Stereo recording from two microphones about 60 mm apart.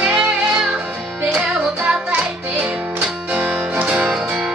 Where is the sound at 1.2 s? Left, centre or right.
Centre.